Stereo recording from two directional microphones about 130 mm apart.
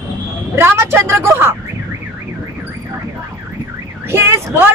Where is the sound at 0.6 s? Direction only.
20° right (ahead or behind).